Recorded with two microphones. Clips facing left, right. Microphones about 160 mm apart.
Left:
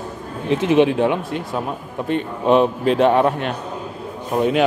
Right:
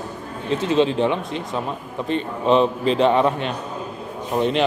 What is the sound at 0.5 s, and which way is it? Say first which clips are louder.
Speech: left 3 dB; 15° left (ahead or behind).